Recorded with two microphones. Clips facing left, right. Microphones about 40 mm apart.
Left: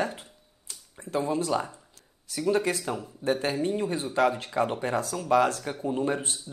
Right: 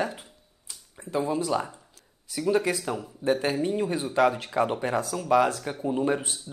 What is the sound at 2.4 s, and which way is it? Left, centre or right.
Speech, centre.